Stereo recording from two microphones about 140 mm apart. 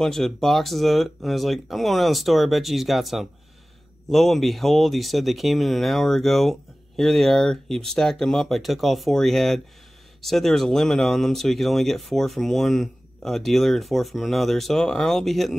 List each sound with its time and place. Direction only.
0.0 s speech: centre (ahead or behind)